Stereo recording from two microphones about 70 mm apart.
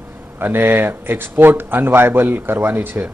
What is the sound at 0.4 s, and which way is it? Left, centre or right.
Speech, right.